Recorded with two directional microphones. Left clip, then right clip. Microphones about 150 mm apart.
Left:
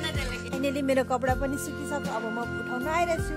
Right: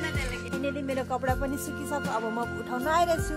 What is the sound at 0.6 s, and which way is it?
Music, 90° left.